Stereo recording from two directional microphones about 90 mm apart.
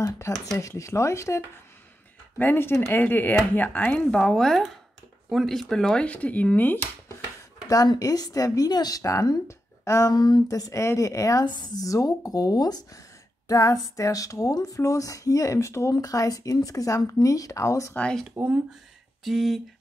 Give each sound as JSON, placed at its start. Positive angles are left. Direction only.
{"t": 0.0, "sound": "speech", "side_deg": 40}
{"t": 2.3, "sound": "speech", "side_deg": 25}
{"t": 4.1, "sound": "speech", "side_deg": 5}
{"t": 7.7, "sound": "speech", "side_deg": 45}
{"t": 10.1, "sound": "speech", "side_deg": 50}
{"t": 11.4, "sound": "speech", "side_deg": 55}
{"t": 18.4, "sound": "speech", "side_deg": -25}
{"t": 19.2, "sound": "speech", "side_deg": 0}